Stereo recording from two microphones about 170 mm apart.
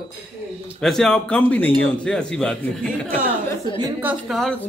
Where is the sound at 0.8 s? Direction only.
5° left (ahead or behind).